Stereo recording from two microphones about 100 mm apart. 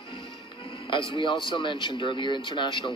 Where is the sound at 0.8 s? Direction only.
55° left (ahead or behind).